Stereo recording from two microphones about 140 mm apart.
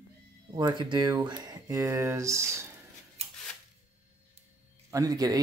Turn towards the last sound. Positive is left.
turn(degrees=-25)  # may be behind; listen again after turning